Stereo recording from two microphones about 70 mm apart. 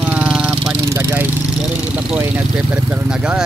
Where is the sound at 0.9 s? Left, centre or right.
Right.